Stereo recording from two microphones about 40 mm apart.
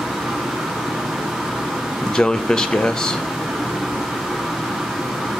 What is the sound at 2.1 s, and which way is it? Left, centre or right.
Speech, centre.